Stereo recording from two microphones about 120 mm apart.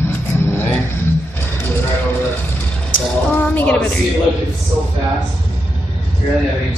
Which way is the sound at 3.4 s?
15° left (ahead or behind).